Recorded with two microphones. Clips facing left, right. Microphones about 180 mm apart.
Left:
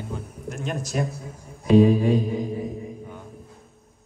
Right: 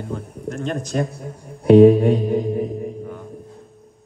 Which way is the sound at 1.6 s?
60° right (ahead or behind).